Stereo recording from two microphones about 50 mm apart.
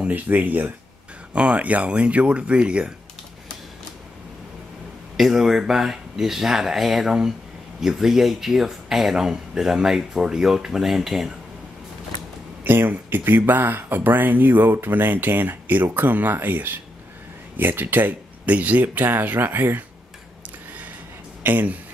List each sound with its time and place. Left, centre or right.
0.0 s speech: right
1.3 s speech: right
5.1 s speech: centre
12.6 s speech: right
21.4 s speech: right